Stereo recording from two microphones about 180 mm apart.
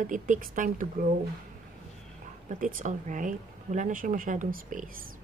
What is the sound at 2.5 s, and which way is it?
Speech, 45° right (ahead or behind).